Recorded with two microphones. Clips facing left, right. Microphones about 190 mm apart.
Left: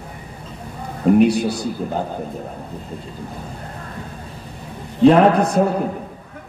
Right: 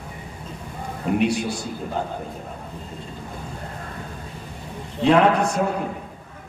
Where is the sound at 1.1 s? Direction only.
35° left (ahead or behind).